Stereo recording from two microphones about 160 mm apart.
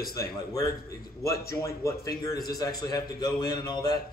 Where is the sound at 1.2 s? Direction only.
20° left (ahead or behind).